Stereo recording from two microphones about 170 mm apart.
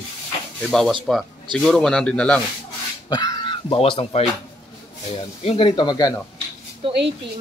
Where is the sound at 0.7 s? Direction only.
5° left (ahead or behind).